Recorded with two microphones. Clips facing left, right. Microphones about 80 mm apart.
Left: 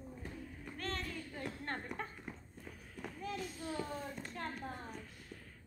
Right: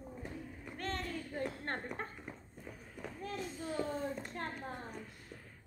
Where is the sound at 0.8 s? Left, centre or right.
Right.